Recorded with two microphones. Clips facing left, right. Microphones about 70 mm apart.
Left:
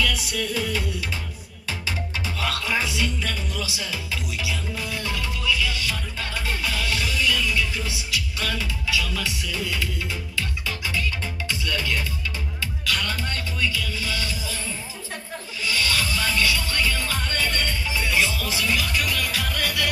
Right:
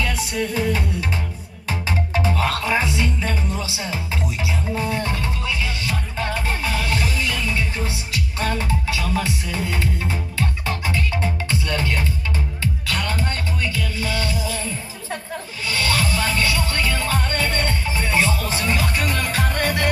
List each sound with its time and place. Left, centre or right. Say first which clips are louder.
0.0 s music: right 2 dB; right
15.6 s music: right 3 dB; right